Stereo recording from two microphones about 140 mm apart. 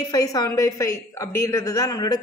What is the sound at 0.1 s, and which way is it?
A woman's voice, 25° left (ahead or behind).